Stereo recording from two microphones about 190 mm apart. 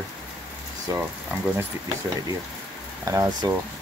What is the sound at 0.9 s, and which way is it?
Speech, 10° right (ahead or behind).